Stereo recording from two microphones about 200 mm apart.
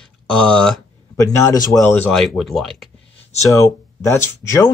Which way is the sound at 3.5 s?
15° left (ahead or behind).